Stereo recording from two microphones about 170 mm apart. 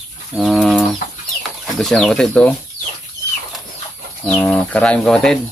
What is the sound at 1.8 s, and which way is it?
Speech, centre (ahead or behind).